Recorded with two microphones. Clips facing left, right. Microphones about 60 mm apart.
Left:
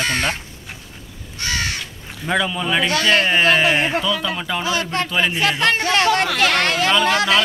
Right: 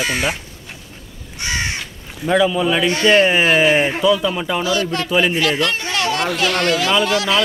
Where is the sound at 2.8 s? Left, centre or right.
Right.